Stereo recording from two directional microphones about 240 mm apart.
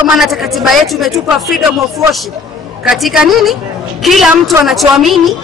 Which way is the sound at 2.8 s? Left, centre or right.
Centre.